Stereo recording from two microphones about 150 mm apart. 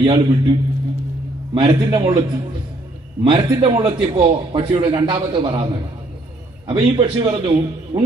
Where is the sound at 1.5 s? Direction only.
30° right (ahead or behind).